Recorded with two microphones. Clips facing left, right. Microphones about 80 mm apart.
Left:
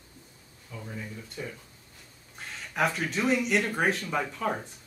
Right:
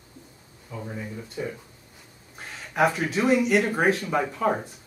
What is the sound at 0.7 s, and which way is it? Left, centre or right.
Speech, right.